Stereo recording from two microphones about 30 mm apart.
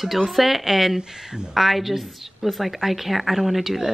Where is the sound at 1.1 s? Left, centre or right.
Right.